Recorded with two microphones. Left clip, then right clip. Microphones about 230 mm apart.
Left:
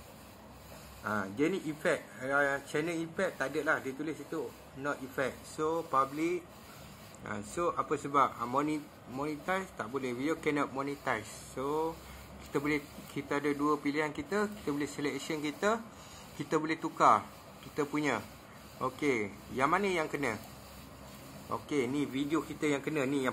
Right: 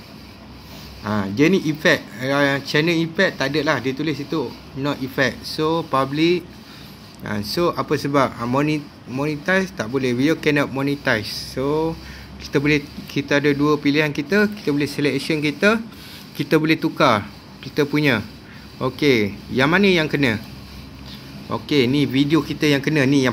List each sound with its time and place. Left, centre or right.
1.0 s speech: centre
21.5 s speech: centre